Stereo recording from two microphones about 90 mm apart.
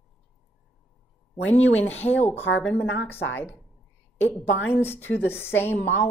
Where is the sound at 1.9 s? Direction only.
20° left (ahead or behind).